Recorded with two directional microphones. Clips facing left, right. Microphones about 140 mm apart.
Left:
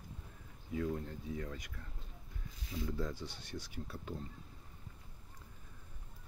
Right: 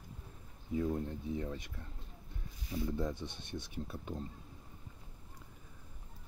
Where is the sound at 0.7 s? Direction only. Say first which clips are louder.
Right 3 dB; 25° right (ahead or behind).